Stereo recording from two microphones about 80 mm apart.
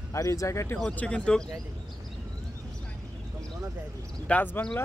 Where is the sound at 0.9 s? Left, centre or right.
Centre.